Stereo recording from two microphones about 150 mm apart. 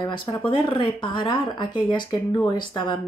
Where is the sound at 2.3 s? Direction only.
20° left (ahead or behind).